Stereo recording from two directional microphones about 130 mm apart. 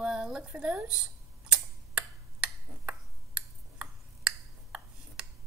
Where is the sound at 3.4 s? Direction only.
5° right (ahead or behind).